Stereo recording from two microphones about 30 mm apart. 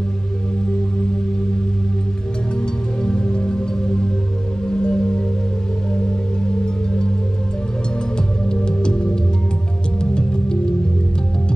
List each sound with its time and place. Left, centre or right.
2.6 s music: left
4.6 s music: left
8.6 s music: left